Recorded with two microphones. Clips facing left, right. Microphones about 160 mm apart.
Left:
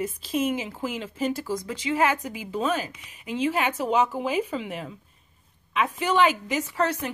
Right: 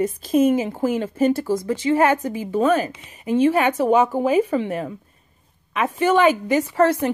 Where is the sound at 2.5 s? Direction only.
55° right (ahead or behind).